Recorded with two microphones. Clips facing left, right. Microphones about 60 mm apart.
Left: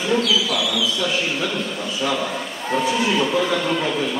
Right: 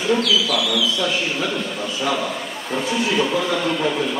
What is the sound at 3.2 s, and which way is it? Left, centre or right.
Speech, centre.